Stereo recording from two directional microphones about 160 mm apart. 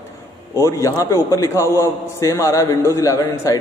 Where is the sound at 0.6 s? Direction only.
20° left (ahead or behind).